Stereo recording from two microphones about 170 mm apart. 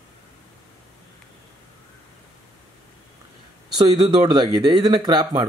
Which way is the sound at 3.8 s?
30° right (ahead or behind).